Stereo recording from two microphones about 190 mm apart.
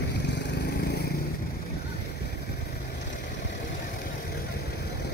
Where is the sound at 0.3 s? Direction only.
65° left (ahead or behind).